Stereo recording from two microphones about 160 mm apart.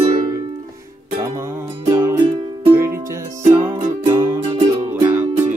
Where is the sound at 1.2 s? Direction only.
15° right (ahead or behind).